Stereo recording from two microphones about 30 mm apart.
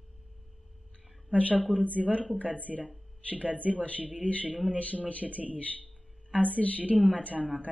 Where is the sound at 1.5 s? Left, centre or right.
Right.